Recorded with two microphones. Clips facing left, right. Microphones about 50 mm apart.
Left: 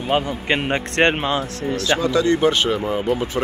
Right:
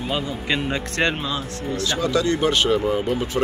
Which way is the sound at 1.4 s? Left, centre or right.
Left.